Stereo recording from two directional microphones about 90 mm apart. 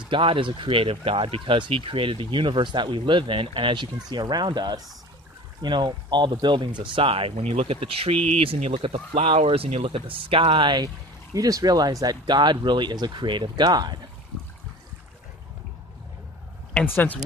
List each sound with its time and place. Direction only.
0.1 s speech: 70° right (ahead or behind)
6.8 s speech: 75° right (ahead or behind); by 10.9 s 60° right (ahead or behind)
11.3 s speech: 40° right (ahead or behind); by 13.7 s 60° right (ahead or behind)
13.7 s speech: 50° right (ahead or behind)
16.8 s speech: 20° left (ahead or behind)